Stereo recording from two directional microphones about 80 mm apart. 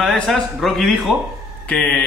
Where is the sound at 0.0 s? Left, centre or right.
Centre.